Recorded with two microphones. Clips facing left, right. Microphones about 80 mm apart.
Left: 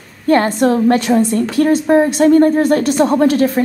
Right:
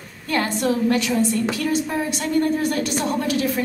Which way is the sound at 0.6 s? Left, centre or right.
Left.